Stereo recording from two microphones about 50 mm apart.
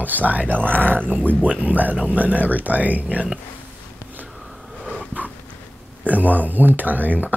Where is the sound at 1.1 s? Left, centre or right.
Right.